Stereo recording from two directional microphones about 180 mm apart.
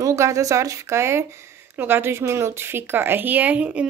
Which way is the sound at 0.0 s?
15° right (ahead or behind).